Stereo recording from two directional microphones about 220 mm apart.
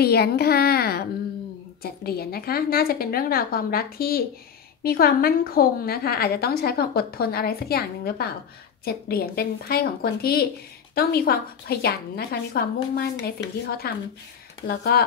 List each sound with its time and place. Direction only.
0.0 s a woman's voice: 45° left (ahead or behind)